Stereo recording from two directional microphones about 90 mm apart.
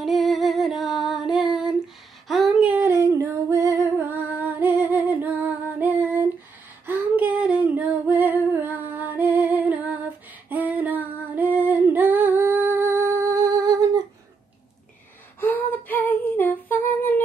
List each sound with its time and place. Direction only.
0.0 s music: centre (ahead or behind)
2.2 s a sound: centre (ahead or behind)
2.6 s a sound: 20° right (ahead or behind)
2.9 s female singing: 35° right (ahead or behind)
4.1 s music: 20° right (ahead or behind)
6.9 s female singing: 20° right (ahead or behind); by 14.0 s 45° right (ahead or behind)
15.4 s humming: 20° left (ahead or behind)